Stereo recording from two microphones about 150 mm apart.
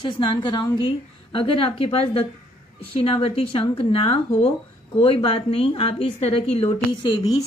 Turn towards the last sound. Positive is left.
turn(degrees=35)  # may be behind; listen again after turning